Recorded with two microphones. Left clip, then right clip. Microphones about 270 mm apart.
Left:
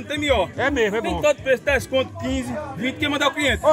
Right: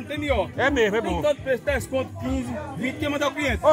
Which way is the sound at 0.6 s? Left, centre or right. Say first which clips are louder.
Even; centre.